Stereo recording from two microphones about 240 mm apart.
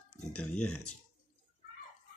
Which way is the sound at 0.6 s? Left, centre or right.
Left.